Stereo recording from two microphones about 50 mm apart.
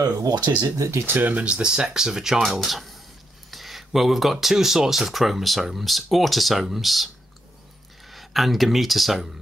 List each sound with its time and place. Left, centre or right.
0.7 s speech: right
1.0 s speech: right
1.4 s speech: centre
2.6 s speech: centre
8.1 s speech: centre